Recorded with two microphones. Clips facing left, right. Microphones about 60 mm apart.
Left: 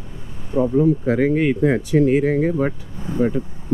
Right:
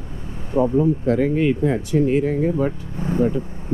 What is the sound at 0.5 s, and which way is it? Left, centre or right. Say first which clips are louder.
Speech: right 1 dB; right.